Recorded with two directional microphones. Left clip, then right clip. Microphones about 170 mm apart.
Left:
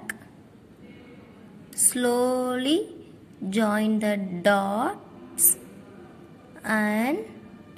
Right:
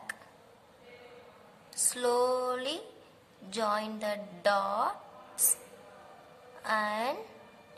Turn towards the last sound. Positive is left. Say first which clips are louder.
# left 6 dB
turn(degrees=15)  # may be behind; listen again after turning